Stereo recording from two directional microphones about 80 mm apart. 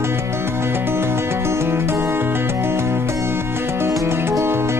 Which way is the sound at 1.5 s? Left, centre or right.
Right.